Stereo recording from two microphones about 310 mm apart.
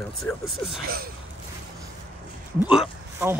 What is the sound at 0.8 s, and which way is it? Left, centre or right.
Speech, right.